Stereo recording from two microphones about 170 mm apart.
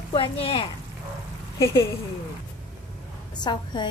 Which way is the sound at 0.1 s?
30° left (ahead or behind).